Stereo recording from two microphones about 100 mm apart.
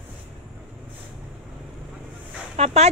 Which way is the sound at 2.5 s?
90° right.